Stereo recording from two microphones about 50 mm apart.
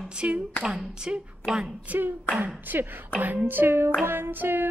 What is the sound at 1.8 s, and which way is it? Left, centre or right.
Speech, right.